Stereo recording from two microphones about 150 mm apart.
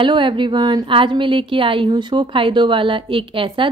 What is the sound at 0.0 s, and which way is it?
A woman's voice, 35° right (ahead or behind).